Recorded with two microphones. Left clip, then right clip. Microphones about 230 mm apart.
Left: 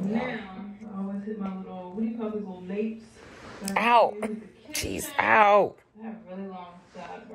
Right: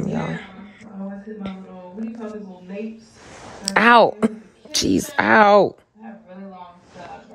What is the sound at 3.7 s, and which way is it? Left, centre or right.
A woman's voice, right.